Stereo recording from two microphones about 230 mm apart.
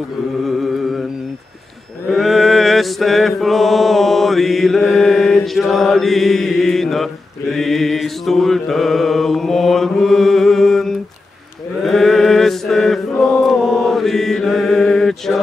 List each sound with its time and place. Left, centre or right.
0.5 s music: centre
2.0 s mantra: centre
11.8 s chant: centre
13.4 s mantra: centre